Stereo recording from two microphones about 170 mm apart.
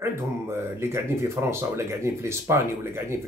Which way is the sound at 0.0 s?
15° right (ahead or behind).